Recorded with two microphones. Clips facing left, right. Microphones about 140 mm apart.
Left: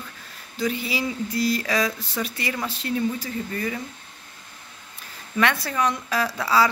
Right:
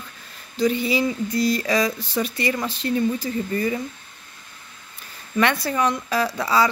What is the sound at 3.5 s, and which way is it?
Speech, 15° right (ahead or behind).